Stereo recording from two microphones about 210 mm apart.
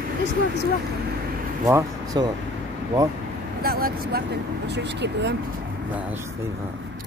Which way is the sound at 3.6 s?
45° right (ahead or behind).